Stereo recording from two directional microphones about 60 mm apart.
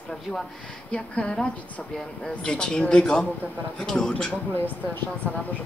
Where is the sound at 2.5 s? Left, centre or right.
Centre.